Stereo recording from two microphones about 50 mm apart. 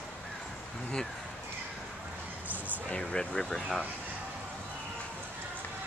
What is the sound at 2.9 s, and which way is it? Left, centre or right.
Speech, centre.